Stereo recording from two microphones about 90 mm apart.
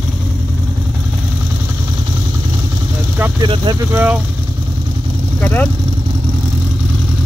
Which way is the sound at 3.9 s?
25° right (ahead or behind).